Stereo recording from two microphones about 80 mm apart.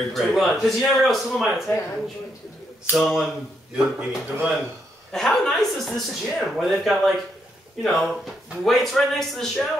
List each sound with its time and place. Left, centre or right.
0.1 s a man's voice: centre
2.9 s a man's voice: centre
5.1 s a man's voice: centre